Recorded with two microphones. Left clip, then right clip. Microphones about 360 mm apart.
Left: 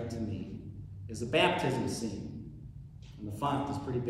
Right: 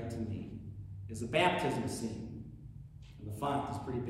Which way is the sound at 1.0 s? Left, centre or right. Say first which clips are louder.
Left 2 dB; centre.